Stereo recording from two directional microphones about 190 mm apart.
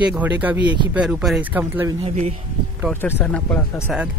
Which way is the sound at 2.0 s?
35° right (ahead or behind).